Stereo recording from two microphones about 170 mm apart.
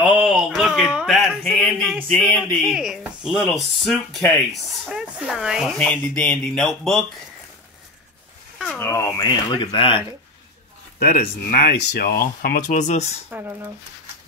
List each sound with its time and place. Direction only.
0.0 s a sound: 5° right (ahead or behind)
2.0 s speech: 5° left (ahead or behind)
8.7 s speech: 15° left (ahead or behind); by 10.0 s 30° left (ahead or behind)
11.1 s speech: 60° left (ahead or behind); by 13.2 s 40° left (ahead or behind)
13.3 s speech: 15° right (ahead or behind)